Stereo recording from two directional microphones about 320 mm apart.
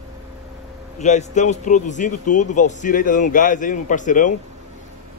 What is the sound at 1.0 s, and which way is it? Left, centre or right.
A man's voice, left.